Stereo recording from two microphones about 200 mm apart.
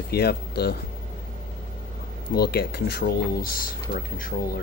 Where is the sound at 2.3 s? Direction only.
50° left (ahead or behind).